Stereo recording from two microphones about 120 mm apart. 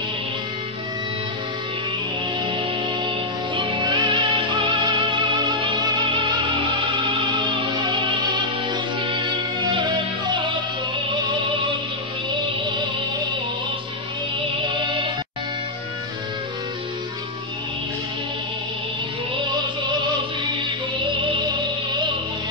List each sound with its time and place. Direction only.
2.4 s music: 40° right (ahead or behind)
12.3 s music: 40° right (ahead or behind)
14.9 s music: 40° right (ahead or behind)
20.5 s music: 40° right (ahead or behind)